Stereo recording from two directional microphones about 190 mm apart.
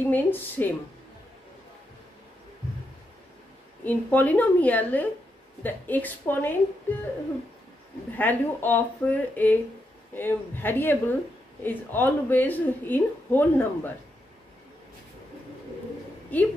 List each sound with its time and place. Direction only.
0.1 s a woman's voice: 10° left (ahead or behind)
3.8 s a woman's voice: 10° left (ahead or behind)
8.2 s a woman's voice: 10° left (ahead or behind)
16.3 s a woman's voice: 10° left (ahead or behind)